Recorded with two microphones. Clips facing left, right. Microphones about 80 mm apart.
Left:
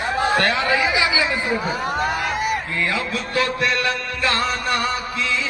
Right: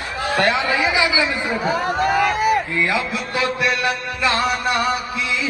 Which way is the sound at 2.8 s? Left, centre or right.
Right.